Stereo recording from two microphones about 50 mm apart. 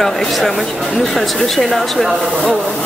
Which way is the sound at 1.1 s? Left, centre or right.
Centre.